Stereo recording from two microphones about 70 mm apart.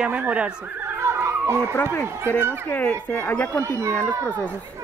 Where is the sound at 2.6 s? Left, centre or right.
Left.